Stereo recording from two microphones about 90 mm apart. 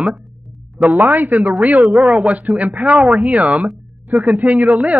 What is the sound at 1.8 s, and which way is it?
Speech, centre (ahead or behind).